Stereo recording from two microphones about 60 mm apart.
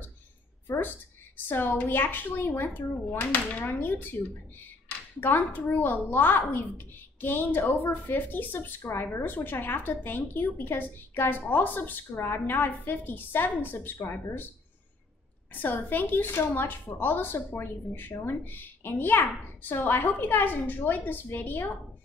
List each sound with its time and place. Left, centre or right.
0.7 s a woman's voice: left
15.5 s a woman's voice: left